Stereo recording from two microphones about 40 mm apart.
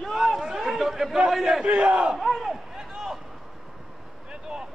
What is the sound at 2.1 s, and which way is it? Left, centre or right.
Battle cry, centre.